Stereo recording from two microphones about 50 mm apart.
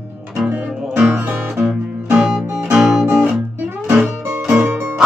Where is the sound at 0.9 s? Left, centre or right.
Right.